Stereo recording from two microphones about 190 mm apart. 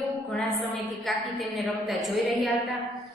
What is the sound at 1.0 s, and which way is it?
A woman's voice, centre (ahead or behind).